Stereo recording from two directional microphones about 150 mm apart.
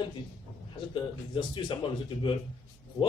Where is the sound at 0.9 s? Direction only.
30° left (ahead or behind).